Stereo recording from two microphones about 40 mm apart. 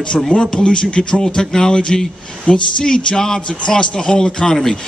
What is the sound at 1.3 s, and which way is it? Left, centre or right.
Speech, centre.